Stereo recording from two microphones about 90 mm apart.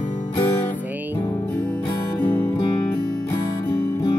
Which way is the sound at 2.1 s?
20° left (ahead or behind).